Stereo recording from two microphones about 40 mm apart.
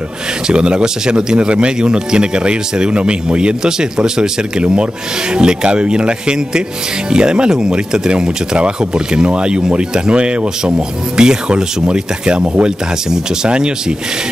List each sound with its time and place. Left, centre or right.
0.5 s a man's voice: right